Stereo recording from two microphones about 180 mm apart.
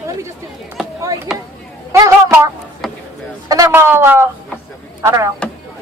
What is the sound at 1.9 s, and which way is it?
Speech, 15° right (ahead or behind).